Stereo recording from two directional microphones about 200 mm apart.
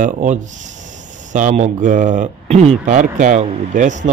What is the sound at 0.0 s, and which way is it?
A man's voice, 40° right (ahead or behind).